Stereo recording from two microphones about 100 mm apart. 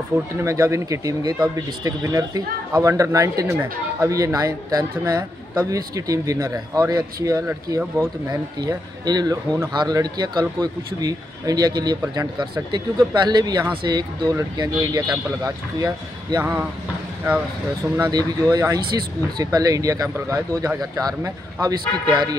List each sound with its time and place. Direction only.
0.4 s speech: 30° right (ahead or behind)
18.1 s speech: 35° right (ahead or behind)